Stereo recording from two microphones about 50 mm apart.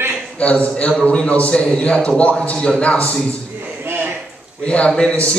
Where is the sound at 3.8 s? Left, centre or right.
Right.